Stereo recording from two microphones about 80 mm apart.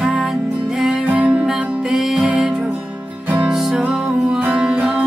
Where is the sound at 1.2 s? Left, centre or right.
Centre.